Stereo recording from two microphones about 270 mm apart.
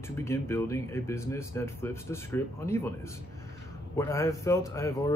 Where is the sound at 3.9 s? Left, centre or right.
Centre.